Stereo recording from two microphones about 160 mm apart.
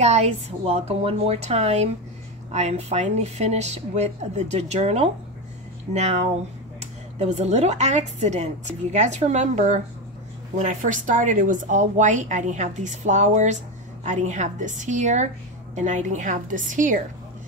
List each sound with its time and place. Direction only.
0.0 s a woman's voice: 45° right (ahead or behind)